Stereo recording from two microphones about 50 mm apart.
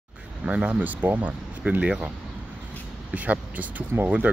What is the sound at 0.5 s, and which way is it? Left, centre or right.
Speech, right.